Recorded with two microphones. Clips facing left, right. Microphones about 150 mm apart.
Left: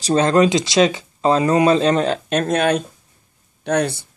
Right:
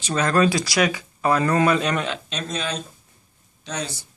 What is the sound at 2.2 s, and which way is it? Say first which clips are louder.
Speech: left 11 dB; 55° left (ahead or behind).